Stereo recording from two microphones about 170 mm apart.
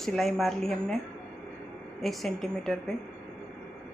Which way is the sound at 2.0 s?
Centre (ahead or behind).